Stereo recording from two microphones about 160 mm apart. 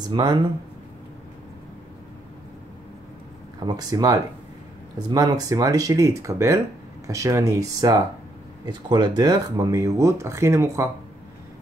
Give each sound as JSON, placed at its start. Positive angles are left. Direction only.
{"t": 0.1, "sound": "speech", "side_deg": -25}
{"t": 3.5, "sound": "speech", "side_deg": -25}